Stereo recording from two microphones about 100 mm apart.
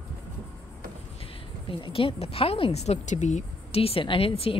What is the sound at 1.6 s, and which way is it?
A woman's voice, 60° left (ahead or behind).